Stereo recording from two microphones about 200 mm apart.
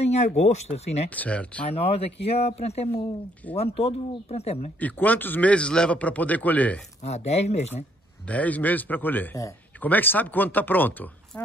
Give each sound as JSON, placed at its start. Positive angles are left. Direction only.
{"t": 0.0, "sound": "speech", "side_deg": 30}
{"t": 1.1, "sound": "a man's voice", "side_deg": 5}
{"t": 1.7, "sound": "speech", "side_deg": 30}
{"t": 4.7, "sound": "a man's voice", "side_deg": 10}
{"t": 7.0, "sound": "speech", "side_deg": 35}
{"t": 8.3, "sound": "a man's voice", "side_deg": 5}